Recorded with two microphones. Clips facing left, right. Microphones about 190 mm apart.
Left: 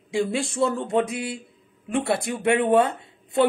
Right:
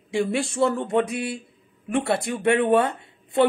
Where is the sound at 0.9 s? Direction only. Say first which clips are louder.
Right 1 dB; 15° left (ahead or behind).